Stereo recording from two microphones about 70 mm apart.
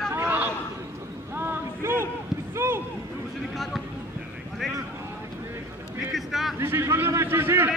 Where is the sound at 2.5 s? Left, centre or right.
Right.